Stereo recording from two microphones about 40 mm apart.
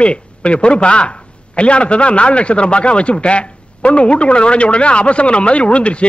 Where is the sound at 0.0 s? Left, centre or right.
Left.